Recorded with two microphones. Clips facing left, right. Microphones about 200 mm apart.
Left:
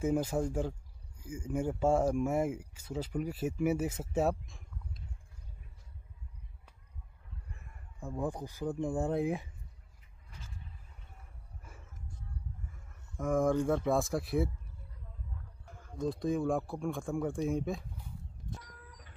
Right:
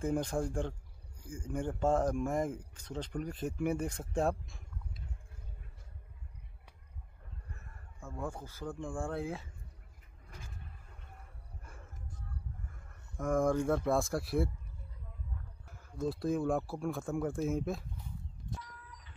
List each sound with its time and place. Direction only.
0.0 s speech: 5° left (ahead or behind)
7.5 s speech: 15° left (ahead or behind)
10.2 s vehicle: 50° right (ahead or behind)
13.2 s speech: centre (ahead or behind)
15.6 s speech: 5° right (ahead or behind)
18.6 s a sound: 45° left (ahead or behind)